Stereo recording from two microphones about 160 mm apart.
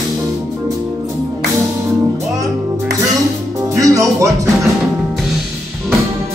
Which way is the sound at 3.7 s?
20° right (ahead or behind).